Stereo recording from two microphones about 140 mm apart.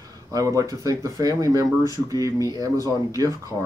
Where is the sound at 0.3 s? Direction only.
25° right (ahead or behind).